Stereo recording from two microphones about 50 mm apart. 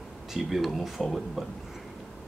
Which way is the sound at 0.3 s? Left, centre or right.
Centre.